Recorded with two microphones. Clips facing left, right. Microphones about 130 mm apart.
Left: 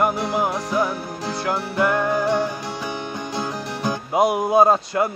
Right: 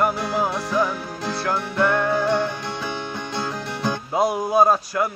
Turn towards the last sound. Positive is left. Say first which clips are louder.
# left 2 dB
turn(degrees=25)  # may be behind; listen again after turning